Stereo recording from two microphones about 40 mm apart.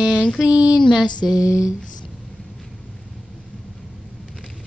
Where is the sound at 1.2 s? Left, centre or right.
Centre.